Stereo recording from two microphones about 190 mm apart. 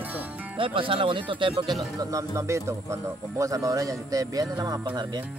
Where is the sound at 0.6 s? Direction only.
30° right (ahead or behind).